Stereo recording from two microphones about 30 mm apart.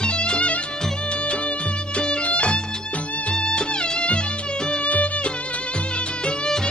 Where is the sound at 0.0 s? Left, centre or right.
Left.